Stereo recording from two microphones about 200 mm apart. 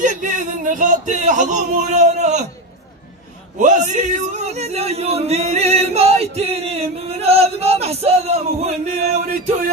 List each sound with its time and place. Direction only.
0.0 s speech: 40° right (ahead or behind)
3.5 s speech: 40° right (ahead or behind)